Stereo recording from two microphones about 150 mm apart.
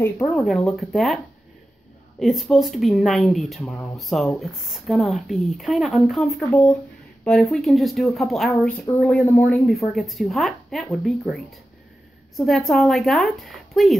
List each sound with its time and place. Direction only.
0.2 s speech: centre (ahead or behind)